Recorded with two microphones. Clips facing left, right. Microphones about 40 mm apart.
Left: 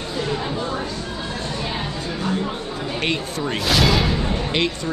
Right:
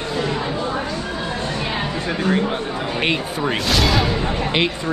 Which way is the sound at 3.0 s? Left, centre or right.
Centre.